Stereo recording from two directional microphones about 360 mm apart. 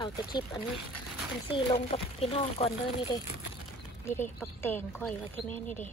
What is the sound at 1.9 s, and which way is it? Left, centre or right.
Speech, centre.